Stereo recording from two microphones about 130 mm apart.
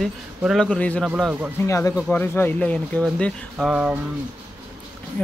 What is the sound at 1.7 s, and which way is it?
Speech, 25° left (ahead or behind).